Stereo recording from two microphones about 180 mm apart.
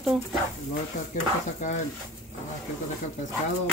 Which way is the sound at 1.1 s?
45° left (ahead or behind).